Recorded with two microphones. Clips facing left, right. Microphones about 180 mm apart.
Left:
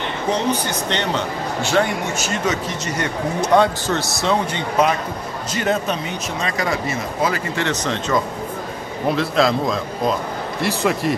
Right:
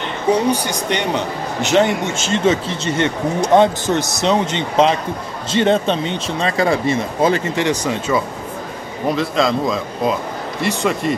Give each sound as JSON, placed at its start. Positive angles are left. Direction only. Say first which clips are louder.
{"t": 0.3, "sound": "a man's voice", "louder": "right 5 dB", "side_deg": -10}
{"t": 9.1, "sound": "speech", "louder": "even", "side_deg": 0}